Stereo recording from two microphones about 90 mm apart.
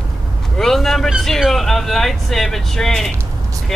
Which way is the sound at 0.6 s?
5° left (ahead or behind).